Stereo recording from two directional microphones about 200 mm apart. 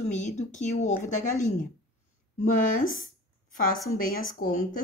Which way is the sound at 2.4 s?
40° left (ahead or behind).